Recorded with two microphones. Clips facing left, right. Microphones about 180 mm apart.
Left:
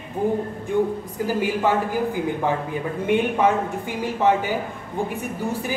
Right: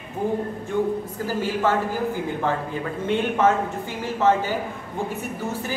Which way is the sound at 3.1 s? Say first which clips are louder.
Left 1 dB; 15° left (ahead or behind).